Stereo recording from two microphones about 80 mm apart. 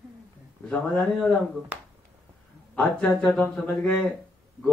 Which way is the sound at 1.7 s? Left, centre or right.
Centre.